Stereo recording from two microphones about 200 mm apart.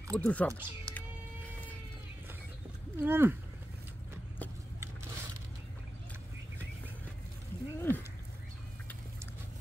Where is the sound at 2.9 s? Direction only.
10° right (ahead or behind).